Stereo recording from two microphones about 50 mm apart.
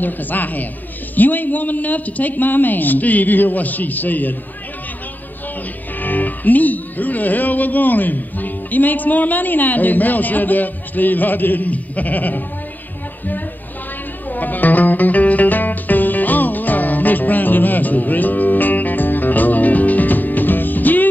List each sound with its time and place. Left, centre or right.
0.0 s speech: left
5.9 s speech: left
14.3 s music: left